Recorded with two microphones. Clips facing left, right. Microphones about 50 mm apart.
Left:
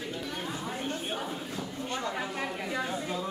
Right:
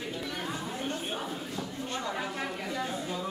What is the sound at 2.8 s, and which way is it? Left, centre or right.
Speech, centre.